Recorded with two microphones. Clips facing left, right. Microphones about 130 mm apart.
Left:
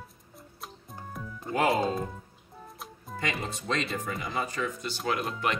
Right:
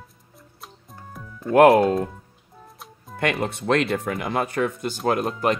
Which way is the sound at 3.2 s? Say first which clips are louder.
Right 9 dB; 65° right (ahead or behind).